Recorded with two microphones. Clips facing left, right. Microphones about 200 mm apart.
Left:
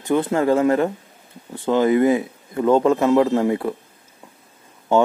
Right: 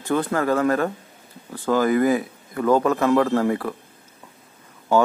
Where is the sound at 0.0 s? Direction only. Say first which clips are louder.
Left 3 dB; 20° left (ahead or behind).